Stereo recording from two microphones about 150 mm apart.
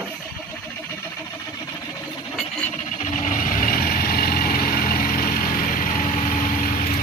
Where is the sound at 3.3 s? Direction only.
65° left (ahead or behind).